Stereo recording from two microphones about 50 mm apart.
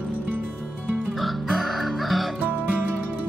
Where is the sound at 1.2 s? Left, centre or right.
Centre.